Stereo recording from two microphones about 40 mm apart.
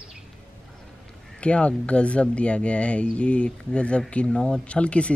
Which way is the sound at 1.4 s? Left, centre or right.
Left.